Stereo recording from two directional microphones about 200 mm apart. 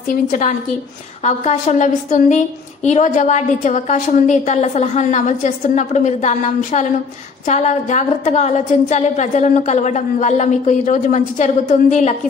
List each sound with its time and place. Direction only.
0.1 s a woman's voice: 45° left (ahead or behind)